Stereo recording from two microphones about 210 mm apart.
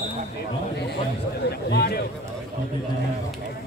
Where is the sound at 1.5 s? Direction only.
50° left (ahead or behind).